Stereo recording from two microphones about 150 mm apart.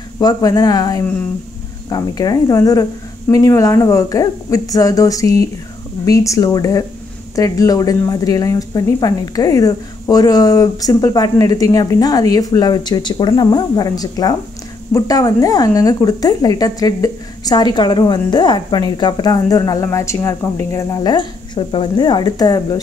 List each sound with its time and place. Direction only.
0.2 s speech: 25° left (ahead or behind)